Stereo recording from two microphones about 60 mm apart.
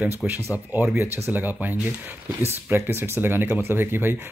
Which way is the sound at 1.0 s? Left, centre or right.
Right.